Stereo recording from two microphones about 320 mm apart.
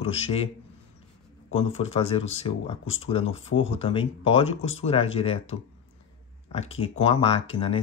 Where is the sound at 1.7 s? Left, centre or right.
Centre.